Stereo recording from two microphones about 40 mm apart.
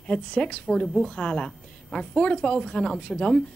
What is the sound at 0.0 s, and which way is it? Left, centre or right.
A woman's voice, left.